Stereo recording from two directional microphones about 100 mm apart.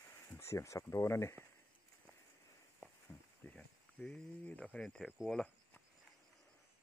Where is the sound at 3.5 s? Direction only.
10° left (ahead or behind).